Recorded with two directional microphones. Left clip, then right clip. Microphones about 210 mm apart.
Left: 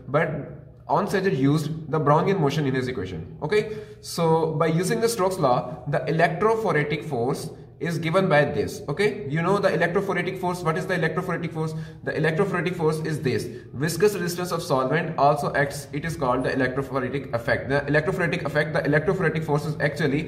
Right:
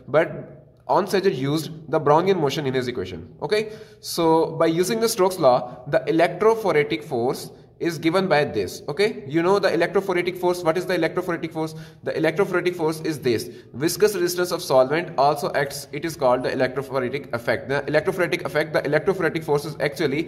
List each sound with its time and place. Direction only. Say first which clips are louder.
0.8 s a man's voice: right 3 dB; 50° right (ahead or behind)